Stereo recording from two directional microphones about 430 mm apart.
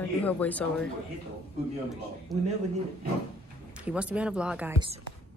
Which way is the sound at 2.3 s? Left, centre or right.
Centre.